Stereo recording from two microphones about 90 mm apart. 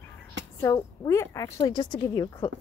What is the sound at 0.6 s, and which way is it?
A woman's voice, 35° left (ahead or behind).